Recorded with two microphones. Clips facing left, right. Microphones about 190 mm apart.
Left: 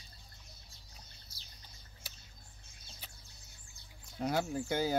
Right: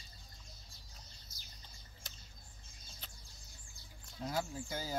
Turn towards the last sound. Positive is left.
turn(degrees=70)  # may be behind; listen again after turning